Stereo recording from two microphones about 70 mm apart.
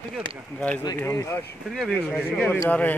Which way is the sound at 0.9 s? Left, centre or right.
Left.